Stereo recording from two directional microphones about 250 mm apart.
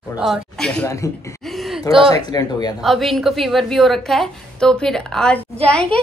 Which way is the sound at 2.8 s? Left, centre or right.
Centre.